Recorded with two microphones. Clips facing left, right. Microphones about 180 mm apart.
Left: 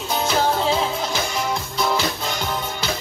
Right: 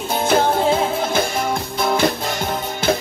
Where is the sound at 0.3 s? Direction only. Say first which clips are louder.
Right 5 dB; 50° right (ahead or behind).